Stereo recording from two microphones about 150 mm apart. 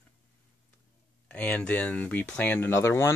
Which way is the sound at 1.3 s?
10° left (ahead or behind).